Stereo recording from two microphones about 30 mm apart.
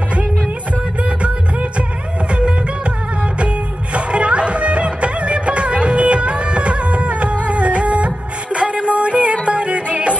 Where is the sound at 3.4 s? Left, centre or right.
Right.